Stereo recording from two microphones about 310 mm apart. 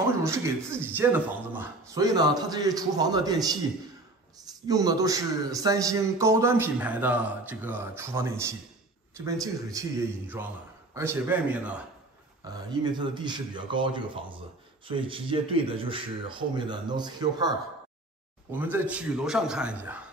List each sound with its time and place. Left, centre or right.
0.2 s a man's voice: centre
4.6 s a man's voice: centre